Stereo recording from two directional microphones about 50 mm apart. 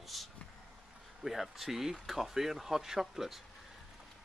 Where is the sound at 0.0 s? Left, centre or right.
Centre.